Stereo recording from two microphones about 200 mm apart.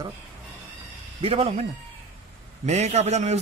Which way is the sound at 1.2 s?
30° right (ahead or behind).